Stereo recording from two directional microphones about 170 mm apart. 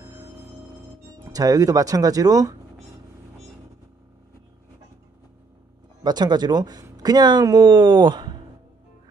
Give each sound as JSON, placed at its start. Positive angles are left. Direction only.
{"t": 0.0, "sound": "music", "side_deg": -20}
{"t": 1.2, "sound": "speech", "side_deg": -20}
{"t": 6.0, "sound": "speech", "side_deg": -25}